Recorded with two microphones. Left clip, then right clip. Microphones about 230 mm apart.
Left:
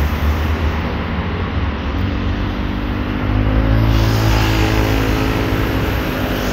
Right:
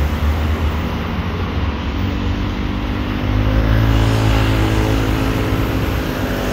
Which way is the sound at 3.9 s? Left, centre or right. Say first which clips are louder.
Even; right.